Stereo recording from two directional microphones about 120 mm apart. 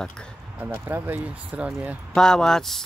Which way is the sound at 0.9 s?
15° right (ahead or behind).